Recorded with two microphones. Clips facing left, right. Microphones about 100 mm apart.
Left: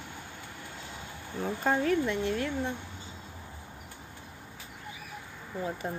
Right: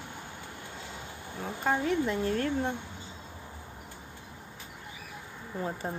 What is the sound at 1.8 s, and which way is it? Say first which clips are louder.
Speech: left 1 dB; 25° right (ahead or behind).